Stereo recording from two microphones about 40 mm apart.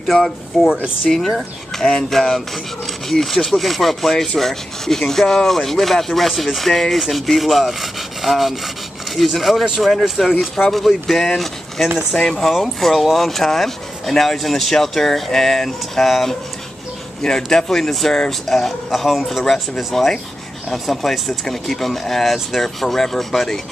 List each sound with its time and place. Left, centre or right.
0.1 s speech: centre
1.8 s speech: centre
17.4 s speech: centre
19.4 s speech: centre
19.8 s speech: centre